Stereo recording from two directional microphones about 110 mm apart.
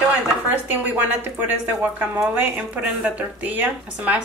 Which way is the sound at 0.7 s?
15° right (ahead or behind).